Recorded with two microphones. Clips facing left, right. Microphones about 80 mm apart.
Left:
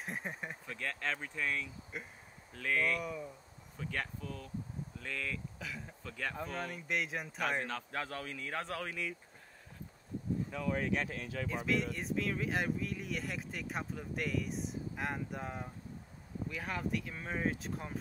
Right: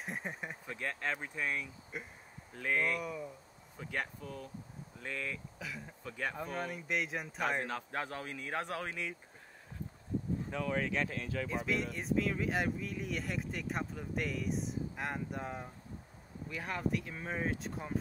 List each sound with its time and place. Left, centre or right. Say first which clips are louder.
0.0 s a sound: even; centre
0.7 s speech: right 1 dB; centre
1.9 s speech: right 1 dB; centre
2.5 s speech: even; centre
3.0 s speech: even; centre
3.7 s speech: right 1 dB; centre
5.6 s speech: even; centre
6.0 s speech: right 2 dB; centre
6.3 s speech: right 1 dB; centre
7.6 s speech: right 1 dB; centre
10.5 s speech: right 2 dB; right
11.1 s speech: right 2 dB; right
11.4 s speech: left 3 dB; centre